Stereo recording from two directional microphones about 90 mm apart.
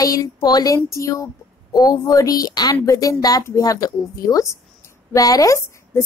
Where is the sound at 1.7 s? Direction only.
45° left (ahead or behind).